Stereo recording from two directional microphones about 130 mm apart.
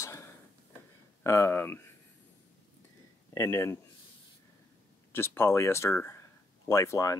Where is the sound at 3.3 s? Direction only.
25° left (ahead or behind).